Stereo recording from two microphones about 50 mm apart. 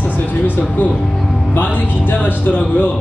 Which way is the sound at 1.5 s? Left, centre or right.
Left.